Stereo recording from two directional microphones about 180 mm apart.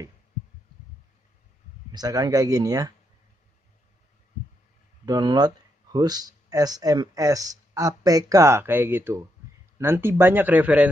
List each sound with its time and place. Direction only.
1.9 s speech: 20° right (ahead or behind)
5.0 s speech: 20° right (ahead or behind)